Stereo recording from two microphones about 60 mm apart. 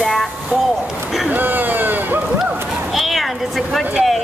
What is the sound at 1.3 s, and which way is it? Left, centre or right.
Speech, right.